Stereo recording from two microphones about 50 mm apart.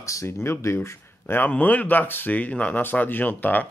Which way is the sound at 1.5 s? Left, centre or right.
Left.